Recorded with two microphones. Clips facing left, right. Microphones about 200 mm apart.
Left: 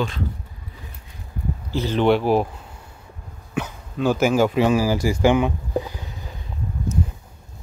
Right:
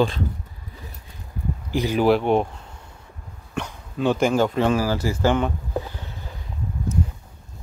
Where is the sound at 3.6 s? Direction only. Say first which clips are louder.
Left 2 dB; 5° left (ahead or behind).